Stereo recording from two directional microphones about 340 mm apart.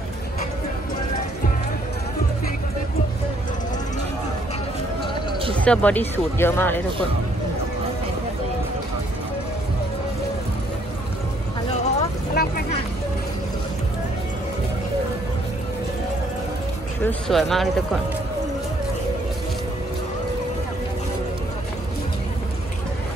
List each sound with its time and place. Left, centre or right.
5.6 s speech: centre
11.7 s a sound: centre
17.0 s speech: centre